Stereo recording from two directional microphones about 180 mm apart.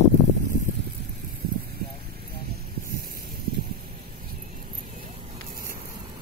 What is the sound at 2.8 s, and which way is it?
Heart sounds, 55° right (ahead or behind).